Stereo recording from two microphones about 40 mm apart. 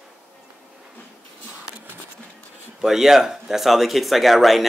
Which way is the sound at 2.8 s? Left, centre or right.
Centre.